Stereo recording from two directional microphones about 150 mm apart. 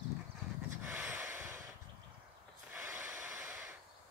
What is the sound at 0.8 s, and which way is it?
Snort, 10° right (ahead or behind).